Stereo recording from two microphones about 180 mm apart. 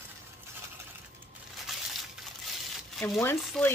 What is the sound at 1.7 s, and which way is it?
Crumpling, centre (ahead or behind).